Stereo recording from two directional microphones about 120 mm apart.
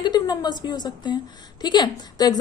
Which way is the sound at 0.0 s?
35° left (ahead or behind).